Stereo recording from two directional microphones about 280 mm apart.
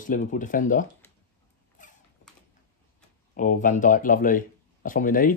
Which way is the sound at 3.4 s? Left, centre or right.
Left.